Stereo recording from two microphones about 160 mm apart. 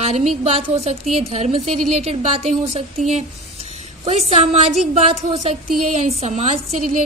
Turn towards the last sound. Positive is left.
turn(degrees=-45)  # may be behind; listen again after turning